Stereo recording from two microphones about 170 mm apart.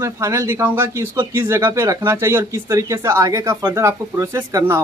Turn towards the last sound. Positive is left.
turn(degrees=-15)  # may be behind; listen again after turning